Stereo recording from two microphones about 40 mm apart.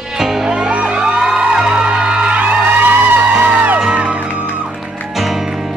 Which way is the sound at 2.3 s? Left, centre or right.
Right.